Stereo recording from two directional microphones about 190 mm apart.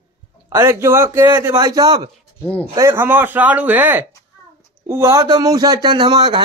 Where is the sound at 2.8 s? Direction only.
15° right (ahead or behind).